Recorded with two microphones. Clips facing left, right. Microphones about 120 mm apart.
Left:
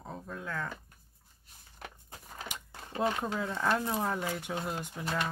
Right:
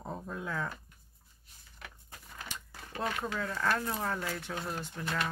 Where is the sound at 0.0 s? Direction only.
10° right (ahead or behind).